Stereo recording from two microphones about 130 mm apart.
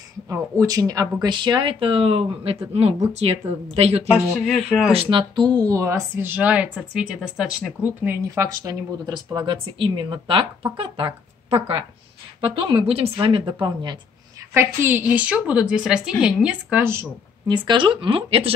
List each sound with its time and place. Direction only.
0.3 s speech: 25° right (ahead or behind); by 4.0 s 55° right (ahead or behind)
4.1 s speech: 5° right (ahead or behind)
4.9 s speech: 35° right (ahead or behind)
14.5 s a woman's voice: 20° right (ahead or behind)
17.5 s speech: 35° right (ahead or behind)